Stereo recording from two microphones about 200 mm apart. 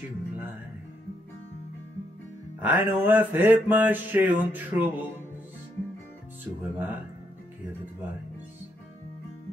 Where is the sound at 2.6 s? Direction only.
10° right (ahead or behind).